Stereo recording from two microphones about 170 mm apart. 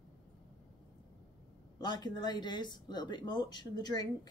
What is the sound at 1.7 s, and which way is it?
Speech, 25° left (ahead or behind).